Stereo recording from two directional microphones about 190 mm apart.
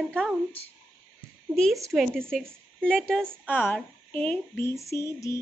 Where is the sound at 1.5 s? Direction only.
Centre (ahead or behind).